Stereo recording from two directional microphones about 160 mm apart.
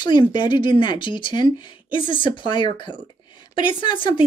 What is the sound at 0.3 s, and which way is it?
A woman's voice, 30° left (ahead or behind).